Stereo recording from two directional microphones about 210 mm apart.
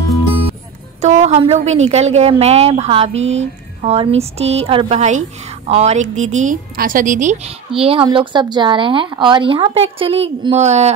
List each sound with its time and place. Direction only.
1.0 s a woman's voice: 30° right (ahead or behind)